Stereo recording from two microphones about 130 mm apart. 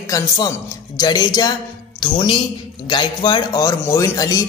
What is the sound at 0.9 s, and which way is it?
A woman's voice, 30° left (ahead or behind).